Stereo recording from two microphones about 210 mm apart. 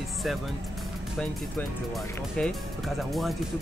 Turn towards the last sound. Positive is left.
turn(degrees=0)  # may be behind; listen again after turning